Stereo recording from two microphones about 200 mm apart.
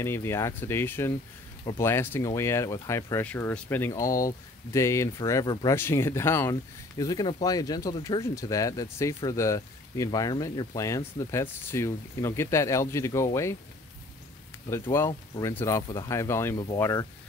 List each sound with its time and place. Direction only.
0.0 s speech: 10° left (ahead or behind)
14.7 s speech: 15° left (ahead or behind)